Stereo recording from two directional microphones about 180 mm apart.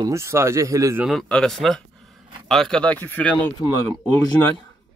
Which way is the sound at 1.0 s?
Centre (ahead or behind).